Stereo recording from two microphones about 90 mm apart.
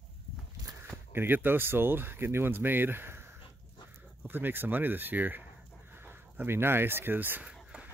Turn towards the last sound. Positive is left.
turn(degrees=-10)  # may be behind; listen again after turning